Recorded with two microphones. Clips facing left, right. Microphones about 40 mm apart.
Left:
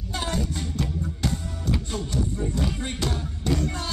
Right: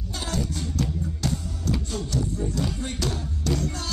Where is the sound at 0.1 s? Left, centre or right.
Left.